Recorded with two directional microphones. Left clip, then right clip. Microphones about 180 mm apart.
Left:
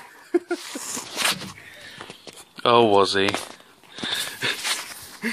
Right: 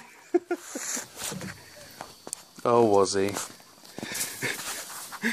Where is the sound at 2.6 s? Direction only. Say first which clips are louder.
Left 4 dB; centre (ahead or behind).